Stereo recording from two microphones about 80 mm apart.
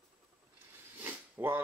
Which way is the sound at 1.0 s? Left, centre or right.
Right.